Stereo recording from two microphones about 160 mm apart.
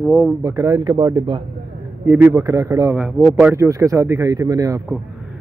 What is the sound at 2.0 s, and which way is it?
Speech, 15° right (ahead or behind).